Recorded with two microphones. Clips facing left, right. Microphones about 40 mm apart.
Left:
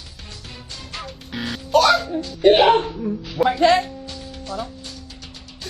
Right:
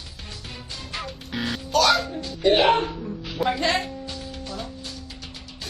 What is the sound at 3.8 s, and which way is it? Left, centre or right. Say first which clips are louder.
Music: even; centre.